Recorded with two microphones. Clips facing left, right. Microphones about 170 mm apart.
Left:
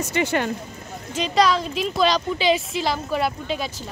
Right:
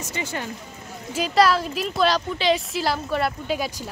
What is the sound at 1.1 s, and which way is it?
A woman's voice, 5° right (ahead or behind).